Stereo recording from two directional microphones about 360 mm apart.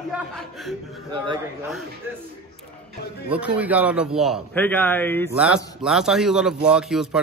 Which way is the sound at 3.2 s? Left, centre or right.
Centre.